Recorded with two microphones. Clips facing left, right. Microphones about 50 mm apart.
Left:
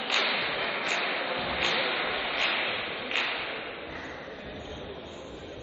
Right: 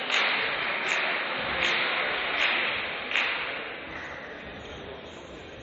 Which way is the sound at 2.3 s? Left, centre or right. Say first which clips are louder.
Right 3 dB; right.